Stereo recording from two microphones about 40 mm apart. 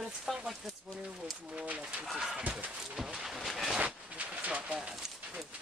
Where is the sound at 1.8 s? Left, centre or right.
Right.